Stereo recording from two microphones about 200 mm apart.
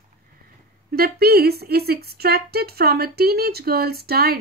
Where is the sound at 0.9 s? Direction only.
50° right (ahead or behind).